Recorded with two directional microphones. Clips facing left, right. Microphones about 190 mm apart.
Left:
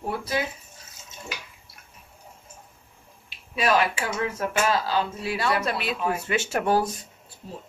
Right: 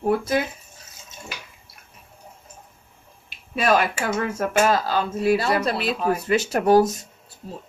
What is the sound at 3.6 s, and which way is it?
Speech, 45° right (ahead or behind).